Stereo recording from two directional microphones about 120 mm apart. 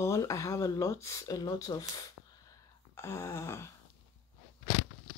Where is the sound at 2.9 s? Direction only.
20° left (ahead or behind).